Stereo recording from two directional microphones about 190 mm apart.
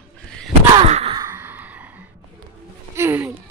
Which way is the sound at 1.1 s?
15° right (ahead or behind).